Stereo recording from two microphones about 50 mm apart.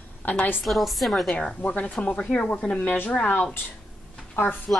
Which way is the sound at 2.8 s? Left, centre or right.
Left.